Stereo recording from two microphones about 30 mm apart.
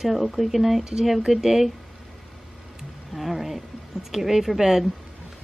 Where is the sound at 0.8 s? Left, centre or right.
Right.